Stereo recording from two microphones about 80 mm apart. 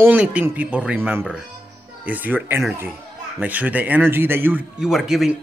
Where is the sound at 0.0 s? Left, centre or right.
Centre.